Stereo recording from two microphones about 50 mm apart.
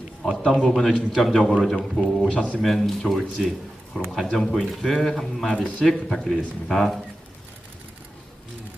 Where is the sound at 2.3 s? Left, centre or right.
Left.